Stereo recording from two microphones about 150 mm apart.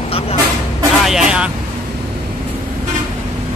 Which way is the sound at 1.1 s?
5° right (ahead or behind).